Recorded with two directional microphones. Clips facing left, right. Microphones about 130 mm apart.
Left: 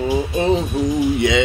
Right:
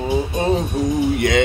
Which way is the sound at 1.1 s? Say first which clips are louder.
Even; 50° right (ahead or behind).